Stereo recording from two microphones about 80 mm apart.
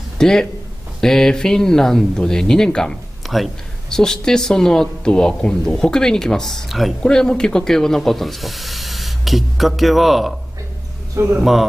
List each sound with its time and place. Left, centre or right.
0.2 s speech: centre
11.2 s speech: right